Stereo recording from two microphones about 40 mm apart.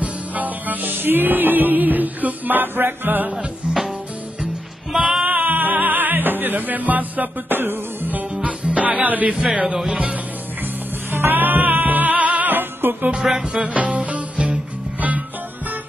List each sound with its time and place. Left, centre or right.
0.0 s music: right
3.6 s music: right
5.5 s music: right
8.4 s music: right
9.0 s speech: right
11.1 s music: right
11.3 s music: right
13.2 s music: centre
13.6 s music: right